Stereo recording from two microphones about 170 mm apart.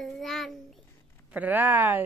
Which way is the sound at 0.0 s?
Centre (ahead or behind).